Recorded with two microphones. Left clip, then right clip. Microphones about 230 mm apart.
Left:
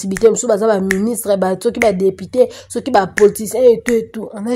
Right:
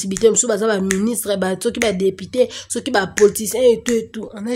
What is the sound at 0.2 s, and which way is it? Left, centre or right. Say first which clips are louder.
A woman's voice: left 3 dB; centre.